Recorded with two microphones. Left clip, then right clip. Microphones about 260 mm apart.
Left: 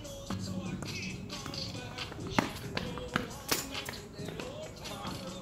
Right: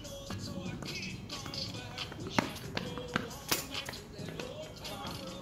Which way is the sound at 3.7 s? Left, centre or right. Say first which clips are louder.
Even; right.